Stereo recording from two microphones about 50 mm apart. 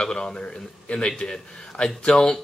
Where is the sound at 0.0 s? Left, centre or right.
Centre.